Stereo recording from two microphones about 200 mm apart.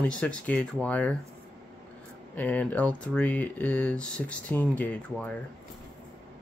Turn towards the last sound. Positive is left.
turn(degrees=10)  # may be behind; listen again after turning